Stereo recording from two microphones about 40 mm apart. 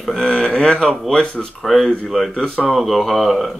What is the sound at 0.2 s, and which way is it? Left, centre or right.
Speech, left.